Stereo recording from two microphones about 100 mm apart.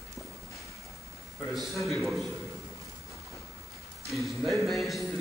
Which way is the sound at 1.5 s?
Centre (ahead or behind).